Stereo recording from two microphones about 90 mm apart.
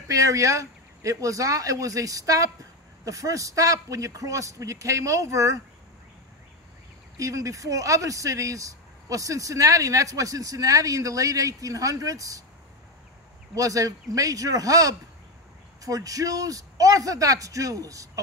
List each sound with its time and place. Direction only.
0.1 s speech: 35° right (ahead or behind)
7.2 s speech: 35° right (ahead or behind)
13.6 s speech: 40° right (ahead or behind)